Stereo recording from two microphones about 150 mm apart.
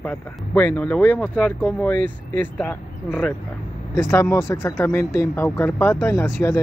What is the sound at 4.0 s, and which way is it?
Speech, 20° left (ahead or behind).